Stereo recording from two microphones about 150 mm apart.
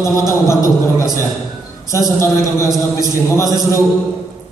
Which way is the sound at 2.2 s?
20° left (ahead or behind).